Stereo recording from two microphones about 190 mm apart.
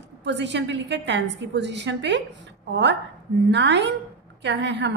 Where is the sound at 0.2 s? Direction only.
65° right (ahead or behind).